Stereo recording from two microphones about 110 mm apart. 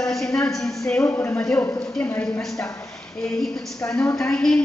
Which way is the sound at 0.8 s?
25° left (ahead or behind).